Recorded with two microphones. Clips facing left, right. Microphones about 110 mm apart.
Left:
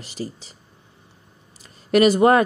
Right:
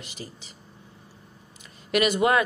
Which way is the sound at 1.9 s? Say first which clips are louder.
Left 7 dB; 35° left (ahead or behind).